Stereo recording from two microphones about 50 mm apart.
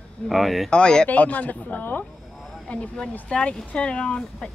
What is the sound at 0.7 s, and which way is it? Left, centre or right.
Speech, centre.